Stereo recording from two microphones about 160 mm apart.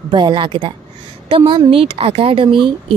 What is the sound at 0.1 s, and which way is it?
A woman's voice, 30° right (ahead or behind).